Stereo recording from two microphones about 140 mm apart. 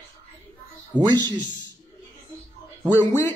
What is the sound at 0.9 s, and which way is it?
Speech, 30° right (ahead or behind).